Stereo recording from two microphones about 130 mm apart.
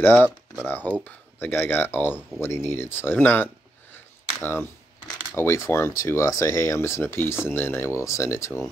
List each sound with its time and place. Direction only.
0.0 s speech: 15° left (ahead or behind)
3.9 s cap gun: 15° left (ahead or behind)
5.3 s speech: 20° left (ahead or behind)